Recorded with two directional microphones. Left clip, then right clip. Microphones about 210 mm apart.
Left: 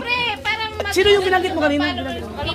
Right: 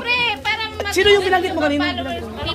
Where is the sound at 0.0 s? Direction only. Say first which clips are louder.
Right 2 dB; 10° right (ahead or behind).